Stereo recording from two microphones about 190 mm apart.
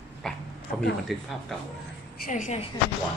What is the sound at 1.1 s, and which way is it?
Speech, centre (ahead or behind).